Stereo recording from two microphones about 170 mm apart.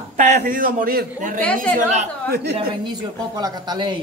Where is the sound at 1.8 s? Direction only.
45° right (ahead or behind).